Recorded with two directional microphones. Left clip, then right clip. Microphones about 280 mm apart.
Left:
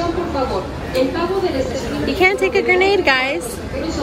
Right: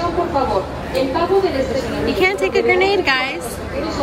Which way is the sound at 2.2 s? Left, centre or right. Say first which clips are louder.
Left 2 dB; centre.